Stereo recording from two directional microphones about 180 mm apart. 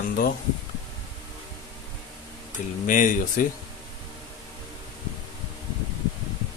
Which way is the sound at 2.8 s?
45° left (ahead or behind).